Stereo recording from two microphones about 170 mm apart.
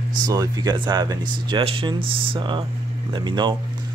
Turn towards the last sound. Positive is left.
turn(degrees=-25)  # may be behind; listen again after turning